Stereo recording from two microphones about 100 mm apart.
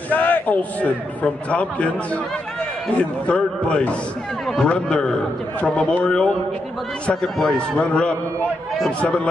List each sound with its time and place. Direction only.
0.1 s a man's voice: 15° left (ahead or behind)